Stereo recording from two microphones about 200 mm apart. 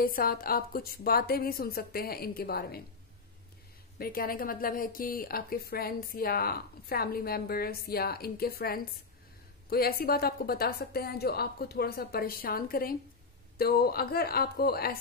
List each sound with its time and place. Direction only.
0.0 s speech: 45° left (ahead or behind)
4.0 s speech: 45° left (ahead or behind)